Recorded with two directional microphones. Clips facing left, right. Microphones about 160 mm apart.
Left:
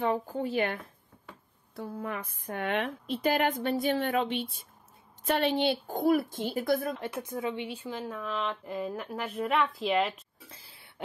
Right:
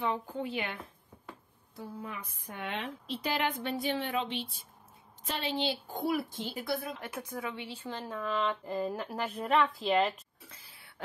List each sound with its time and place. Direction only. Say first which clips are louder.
0.0 s a woman's voice: left 4 dB; 45° left (ahead or behind)
1.8 s a woman's voice: left 6 dB; 60° left (ahead or behind)
5.9 s speech: left 6 dB; 45° left (ahead or behind)
7.0 s speech: left 5 dB; 25° left (ahead or behind); by 10.2 s centre (ahead or behind)
10.5 s a sound: left 3 dB; 30° left (ahead or behind)